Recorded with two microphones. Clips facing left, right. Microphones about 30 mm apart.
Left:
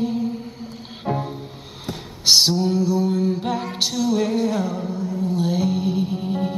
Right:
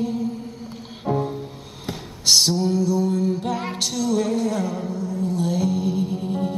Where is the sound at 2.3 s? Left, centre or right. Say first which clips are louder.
Left 1 dB; centre.